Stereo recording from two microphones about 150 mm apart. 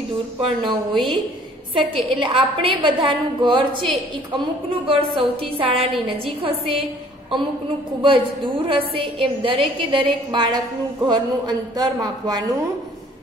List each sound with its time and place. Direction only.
0.4 s a woman's voice: 35° right (ahead or behind)
4.8 s a woman's voice: 35° right (ahead or behind)
8.0 s a woman's voice: 35° right (ahead or behind)